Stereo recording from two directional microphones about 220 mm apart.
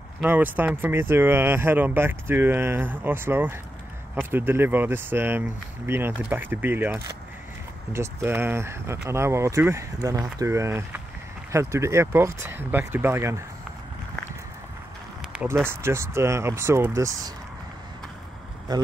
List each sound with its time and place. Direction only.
0.2 s speech: 10° right (ahead or behind)
15.6 s speech: 10° right (ahead or behind)
18.7 s speech: 20° right (ahead or behind)